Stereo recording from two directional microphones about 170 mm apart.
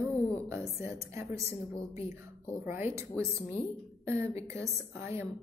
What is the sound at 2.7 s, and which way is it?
Speech, 15° right (ahead or behind).